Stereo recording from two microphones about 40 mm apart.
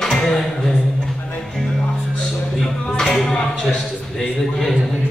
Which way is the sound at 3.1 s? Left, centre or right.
Centre.